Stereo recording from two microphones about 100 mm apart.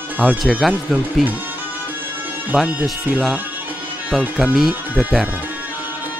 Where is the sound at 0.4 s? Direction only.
Centre (ahead or behind).